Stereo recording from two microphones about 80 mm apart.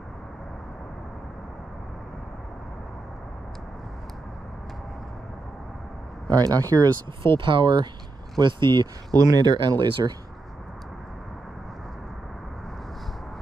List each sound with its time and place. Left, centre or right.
6.3 s speech: right
7.2 s speech: right
9.1 s speech: right